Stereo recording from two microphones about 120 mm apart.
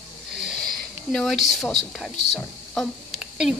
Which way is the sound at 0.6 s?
5° left (ahead or behind).